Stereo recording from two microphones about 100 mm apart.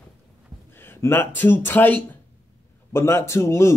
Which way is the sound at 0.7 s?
20° left (ahead or behind).